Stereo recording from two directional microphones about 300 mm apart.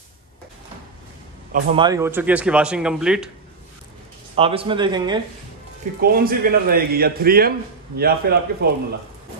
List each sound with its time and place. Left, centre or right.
1.5 s speech: centre
4.4 s speech: centre
5.9 s a man's voice: right